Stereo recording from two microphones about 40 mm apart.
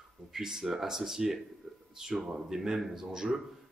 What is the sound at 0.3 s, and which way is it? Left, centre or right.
A man's voice, centre.